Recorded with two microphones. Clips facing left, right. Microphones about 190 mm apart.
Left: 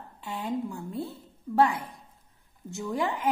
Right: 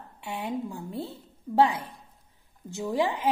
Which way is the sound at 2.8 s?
20° right (ahead or behind).